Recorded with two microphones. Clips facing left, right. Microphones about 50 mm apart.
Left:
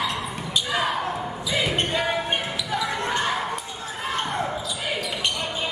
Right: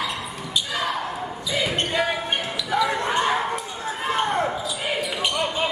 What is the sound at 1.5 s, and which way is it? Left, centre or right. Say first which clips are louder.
Basketball bounce: even; centre.